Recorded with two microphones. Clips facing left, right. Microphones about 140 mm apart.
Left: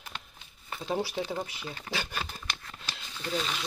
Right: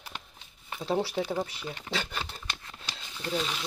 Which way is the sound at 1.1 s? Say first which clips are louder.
Right 3 dB; 10° right (ahead or behind).